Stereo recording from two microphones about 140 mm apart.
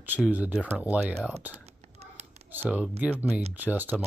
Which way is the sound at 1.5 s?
50° right (ahead or behind).